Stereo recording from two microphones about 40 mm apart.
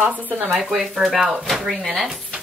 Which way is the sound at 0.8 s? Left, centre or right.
Centre.